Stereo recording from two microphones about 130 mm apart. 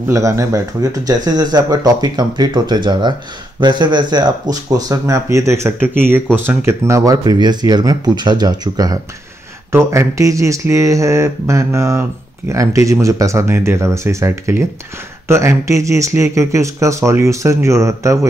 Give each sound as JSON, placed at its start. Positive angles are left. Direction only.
{"t": 0.1, "sound": "speech", "side_deg": -25}